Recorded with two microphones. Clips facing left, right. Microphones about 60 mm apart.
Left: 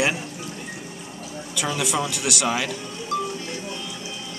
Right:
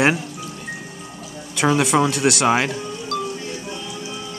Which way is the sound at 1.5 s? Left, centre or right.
Right.